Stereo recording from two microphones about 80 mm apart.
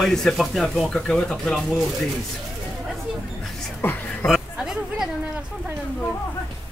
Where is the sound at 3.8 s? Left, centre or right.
Left.